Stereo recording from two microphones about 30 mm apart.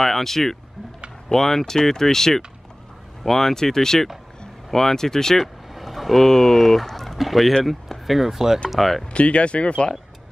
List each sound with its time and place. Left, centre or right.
0.0 s speech: centre
5.4 s vehicle: centre
6.2 s speech: centre
8.6 s speech: centre
9.1 s speech: left